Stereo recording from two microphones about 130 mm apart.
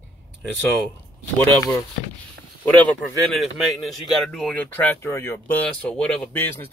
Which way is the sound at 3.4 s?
Centre (ahead or behind).